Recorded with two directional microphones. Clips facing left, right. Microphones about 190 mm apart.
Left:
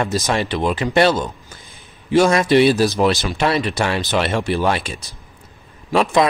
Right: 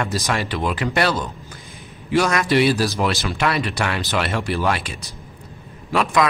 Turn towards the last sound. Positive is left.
turn(degrees=25)  # may be behind; listen again after turning